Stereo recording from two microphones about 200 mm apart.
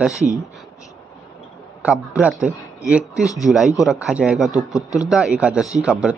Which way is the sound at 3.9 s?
5° right (ahead or behind).